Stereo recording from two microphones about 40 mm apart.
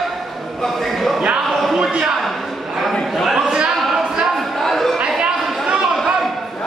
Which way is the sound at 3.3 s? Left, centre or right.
Centre.